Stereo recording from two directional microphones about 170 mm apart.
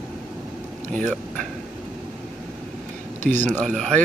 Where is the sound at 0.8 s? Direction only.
5° left (ahead or behind).